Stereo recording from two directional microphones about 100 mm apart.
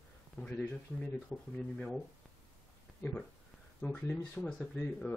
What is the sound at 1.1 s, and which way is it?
Speech, 10° left (ahead or behind).